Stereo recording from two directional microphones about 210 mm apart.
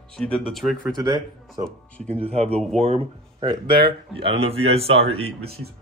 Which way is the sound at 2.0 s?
5° left (ahead or behind).